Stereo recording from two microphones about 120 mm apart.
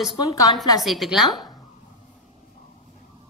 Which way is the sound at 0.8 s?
Centre (ahead or behind).